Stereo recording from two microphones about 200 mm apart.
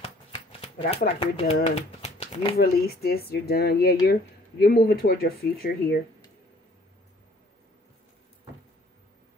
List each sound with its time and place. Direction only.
0.0 s shuffling cards: 30° left (ahead or behind)
1.2 s speech: 30° left (ahead or behind)
2.5 s speech: 50° left (ahead or behind)